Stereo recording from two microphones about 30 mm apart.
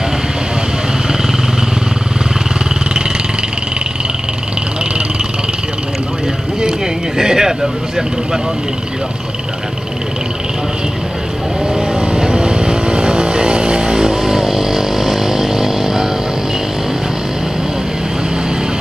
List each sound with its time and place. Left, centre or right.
7.2 s speech: centre
11.7 s vehicle: right; by 16.1 s centre